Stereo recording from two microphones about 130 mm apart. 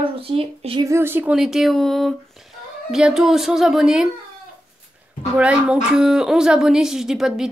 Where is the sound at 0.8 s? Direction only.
20° right (ahead or behind).